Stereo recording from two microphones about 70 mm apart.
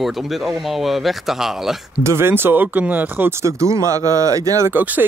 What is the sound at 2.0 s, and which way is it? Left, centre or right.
Speech, right.